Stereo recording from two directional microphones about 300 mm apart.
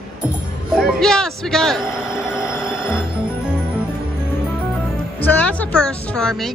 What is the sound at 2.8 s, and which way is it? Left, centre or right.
Music, centre.